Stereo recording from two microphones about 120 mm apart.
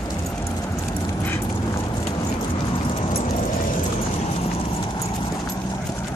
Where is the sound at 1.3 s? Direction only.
15° left (ahead or behind).